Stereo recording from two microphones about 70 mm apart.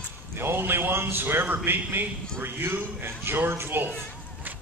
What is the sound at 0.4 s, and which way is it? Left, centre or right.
A man's voice, right.